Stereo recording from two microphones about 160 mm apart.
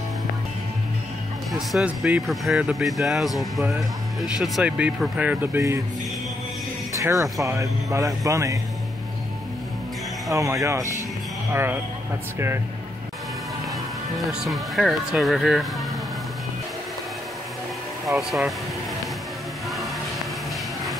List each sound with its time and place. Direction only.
1.5 s speech: centre (ahead or behind)
6.9 s speech: 20° right (ahead or behind)
10.3 s speech: 20° right (ahead or behind)
14.1 s speech: centre (ahead or behind)
18.0 s speech: centre (ahead or behind)